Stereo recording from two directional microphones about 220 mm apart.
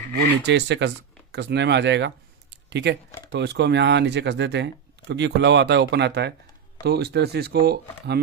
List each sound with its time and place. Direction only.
0.2 s speech: 50° right (ahead or behind)